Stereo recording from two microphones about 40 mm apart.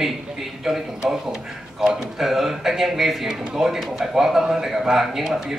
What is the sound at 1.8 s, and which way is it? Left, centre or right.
Speech, centre.